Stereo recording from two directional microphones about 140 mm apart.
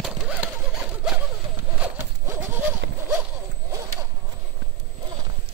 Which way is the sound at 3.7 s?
25° right (ahead or behind).